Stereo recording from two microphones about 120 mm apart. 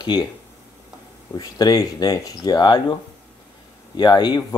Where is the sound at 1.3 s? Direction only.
35° left (ahead or behind).